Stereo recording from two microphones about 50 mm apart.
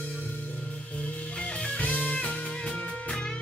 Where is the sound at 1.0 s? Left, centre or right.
Left.